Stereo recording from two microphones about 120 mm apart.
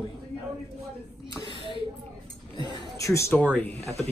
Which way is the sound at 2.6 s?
40° left (ahead or behind).